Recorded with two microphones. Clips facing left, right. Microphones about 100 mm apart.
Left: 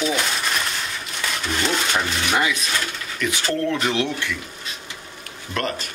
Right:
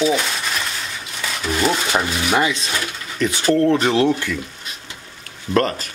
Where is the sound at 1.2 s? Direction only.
5° right (ahead or behind).